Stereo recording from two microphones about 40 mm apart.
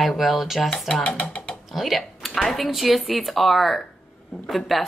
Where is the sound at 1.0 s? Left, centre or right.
Left.